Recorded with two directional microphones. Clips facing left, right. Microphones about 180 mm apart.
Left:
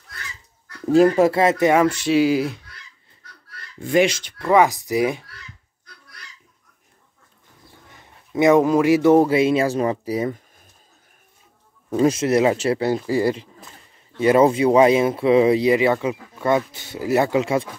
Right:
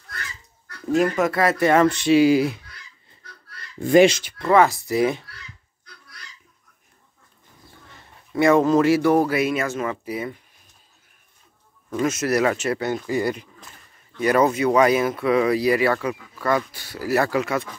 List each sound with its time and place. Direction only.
0.9 s a man's voice: 30° left (ahead or behind)
1.7 s speech: 10° left (ahead or behind)
3.8 s speech: 35° right (ahead or behind)
4.4 s speech: 10° left (ahead or behind)
8.0 s a man's voice: 15° left (ahead or behind); by 10.4 s 40° left (ahead or behind)
11.9 s a man's voice: 30° left (ahead or behind)